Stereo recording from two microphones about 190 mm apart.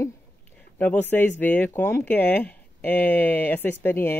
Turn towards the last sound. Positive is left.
turn(degrees=10)  # may be behind; listen again after turning